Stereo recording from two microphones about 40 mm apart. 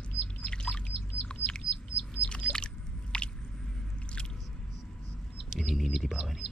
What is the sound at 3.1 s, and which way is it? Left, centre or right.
Squish, left.